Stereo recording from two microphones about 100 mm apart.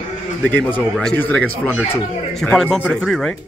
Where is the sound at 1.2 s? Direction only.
15° left (ahead or behind).